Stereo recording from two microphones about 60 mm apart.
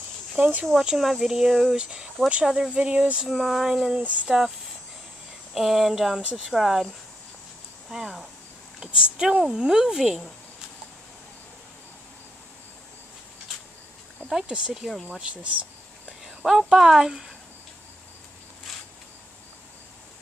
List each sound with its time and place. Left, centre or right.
0.4 s speech: right
0.7 s a sound: centre
1.8 s speech: centre
3.3 s speech: centre
4.0 s speech: right
5.5 s a sound: centre
8.7 s speech: centre
14.2 s speech: centre
15.0 s speech: centre
16.1 s speech: centre
18.7 s a sound: centre